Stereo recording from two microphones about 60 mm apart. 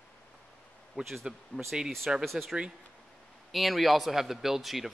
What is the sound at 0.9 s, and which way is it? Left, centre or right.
Speech, centre.